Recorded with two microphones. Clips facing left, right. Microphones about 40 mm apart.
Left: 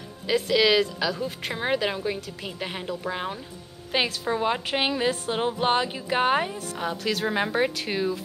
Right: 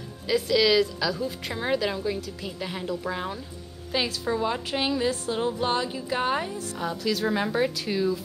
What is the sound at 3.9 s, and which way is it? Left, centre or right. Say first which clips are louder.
A woman's voice: left 1 dB; left.